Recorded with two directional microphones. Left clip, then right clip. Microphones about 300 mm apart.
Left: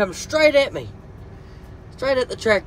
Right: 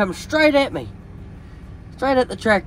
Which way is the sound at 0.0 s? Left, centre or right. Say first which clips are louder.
Even; centre.